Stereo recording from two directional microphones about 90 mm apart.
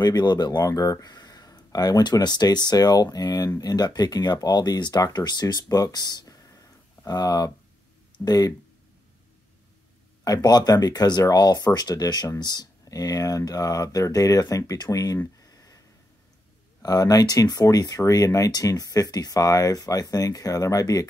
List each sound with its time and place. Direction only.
0.0 s speech: 50° left (ahead or behind)
10.2 s speech: 45° left (ahead or behind)
15.3 s a sound: 40° left (ahead or behind)
16.8 s speech: 45° left (ahead or behind)